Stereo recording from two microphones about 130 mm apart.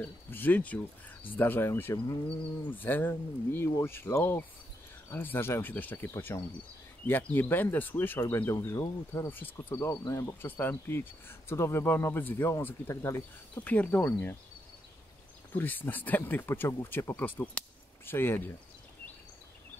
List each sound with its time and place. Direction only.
0.0 s speech: 15° left (ahead or behind)
15.5 s speech: 15° left (ahead or behind)